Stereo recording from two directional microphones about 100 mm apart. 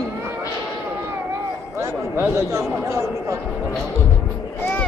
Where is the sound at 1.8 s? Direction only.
25° right (ahead or behind).